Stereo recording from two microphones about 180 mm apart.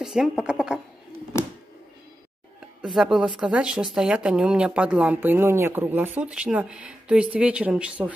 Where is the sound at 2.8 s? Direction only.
5° right (ahead or behind).